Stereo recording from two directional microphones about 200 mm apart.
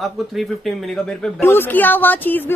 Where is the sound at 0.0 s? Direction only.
Centre (ahead or behind).